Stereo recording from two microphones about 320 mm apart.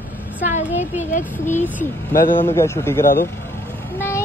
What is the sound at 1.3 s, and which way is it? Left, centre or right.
A woman's voice, centre.